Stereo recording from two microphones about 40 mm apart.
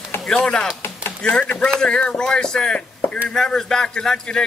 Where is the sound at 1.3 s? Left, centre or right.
Left.